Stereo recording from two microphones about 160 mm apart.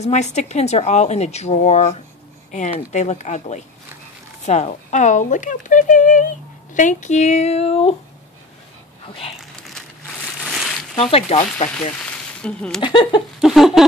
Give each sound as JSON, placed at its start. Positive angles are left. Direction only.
{"t": 0.0, "sound": "speech", "side_deg": 45}
{"t": 9.0, "sound": "speech", "side_deg": 35}
{"t": 11.0, "sound": "speech", "side_deg": 40}
{"t": 12.4, "sound": "speech", "side_deg": 5}
{"t": 12.8, "sound": "a sound", "side_deg": 30}
{"t": 13.4, "sound": "a sound", "side_deg": 0}